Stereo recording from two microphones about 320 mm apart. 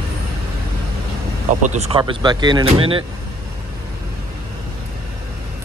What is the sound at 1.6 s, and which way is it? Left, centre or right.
Speech, right.